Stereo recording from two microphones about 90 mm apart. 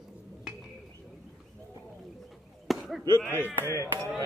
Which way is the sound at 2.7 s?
Centre (ahead or behind).